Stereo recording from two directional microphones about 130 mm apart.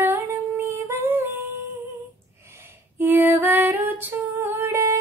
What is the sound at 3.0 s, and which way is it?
Female singing, 15° right (ahead or behind).